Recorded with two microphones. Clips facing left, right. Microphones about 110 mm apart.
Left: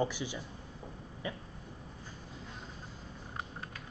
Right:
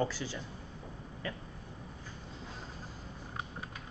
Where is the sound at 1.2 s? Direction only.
15° left (ahead or behind).